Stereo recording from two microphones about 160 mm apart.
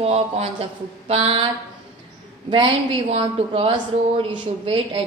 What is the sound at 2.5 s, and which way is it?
A woman's voice, 35° right (ahead or behind).